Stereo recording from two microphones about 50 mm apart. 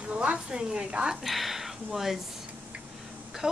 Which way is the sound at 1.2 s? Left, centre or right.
Centre.